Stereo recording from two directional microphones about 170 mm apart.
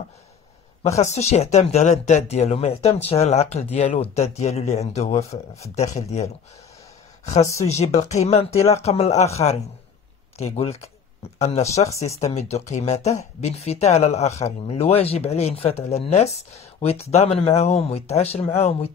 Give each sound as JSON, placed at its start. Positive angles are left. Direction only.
{"t": 0.8, "sound": "speech", "side_deg": 40}
{"t": 7.6, "sound": "speech", "side_deg": 40}
{"t": 8.5, "sound": "speech", "side_deg": 15}
{"t": 8.8, "sound": "speech", "side_deg": 40}